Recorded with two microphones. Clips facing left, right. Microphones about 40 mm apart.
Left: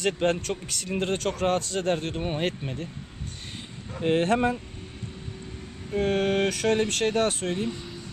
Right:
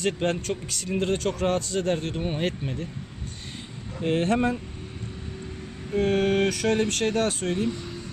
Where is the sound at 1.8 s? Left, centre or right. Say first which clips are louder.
Right 1 dB; centre.